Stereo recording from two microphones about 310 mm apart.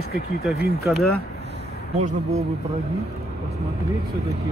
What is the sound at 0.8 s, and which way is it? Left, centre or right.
Speech, centre.